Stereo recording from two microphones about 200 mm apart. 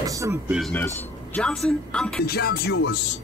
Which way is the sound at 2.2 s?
50° left (ahead or behind).